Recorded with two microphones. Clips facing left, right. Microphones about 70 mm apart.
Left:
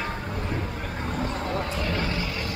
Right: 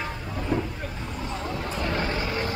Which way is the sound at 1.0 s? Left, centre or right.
Left.